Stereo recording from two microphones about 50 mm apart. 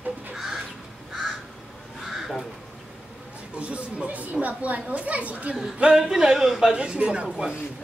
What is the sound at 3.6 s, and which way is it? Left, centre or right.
Speech, right.